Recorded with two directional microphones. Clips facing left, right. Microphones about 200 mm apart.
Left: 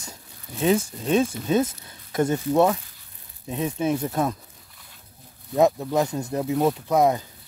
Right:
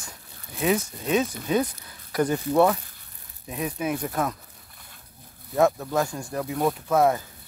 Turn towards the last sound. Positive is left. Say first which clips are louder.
# left 1 dB
turn(degrees=15)  # may be behind; listen again after turning